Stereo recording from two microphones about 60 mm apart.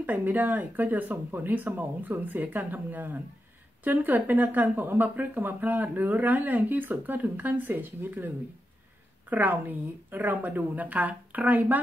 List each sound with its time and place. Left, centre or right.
0.0 s a woman's voice: right
9.3 s a woman's voice: right